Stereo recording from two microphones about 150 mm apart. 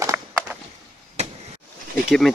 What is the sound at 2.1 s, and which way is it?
Speech, centre (ahead or behind).